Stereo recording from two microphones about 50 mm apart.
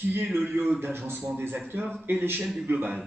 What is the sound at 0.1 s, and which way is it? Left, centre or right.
A man's voice, right.